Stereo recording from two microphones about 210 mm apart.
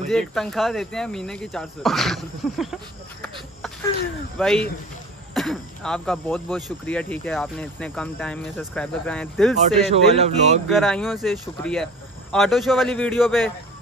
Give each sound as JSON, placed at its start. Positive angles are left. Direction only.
{"t": 0.1, "sound": "speech", "side_deg": 0}
{"t": 4.4, "sound": "speech", "side_deg": 5}
{"t": 9.8, "sound": "speech", "side_deg": -30}
{"t": 10.7, "sound": "speech", "side_deg": 0}